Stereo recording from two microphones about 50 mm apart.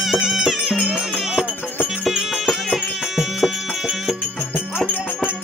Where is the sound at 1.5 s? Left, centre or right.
Left.